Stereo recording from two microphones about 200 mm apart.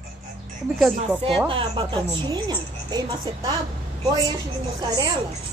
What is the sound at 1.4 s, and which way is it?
Speech, 25° right (ahead or behind).